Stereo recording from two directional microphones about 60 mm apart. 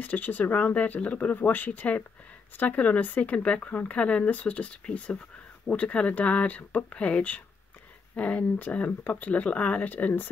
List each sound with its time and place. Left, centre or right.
0.0 s speech: left